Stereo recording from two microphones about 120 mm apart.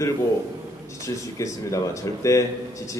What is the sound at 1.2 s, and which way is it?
A man's voice, 25° left (ahead or behind).